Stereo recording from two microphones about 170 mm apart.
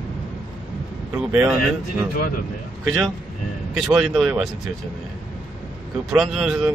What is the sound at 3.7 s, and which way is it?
Speech, centre (ahead or behind).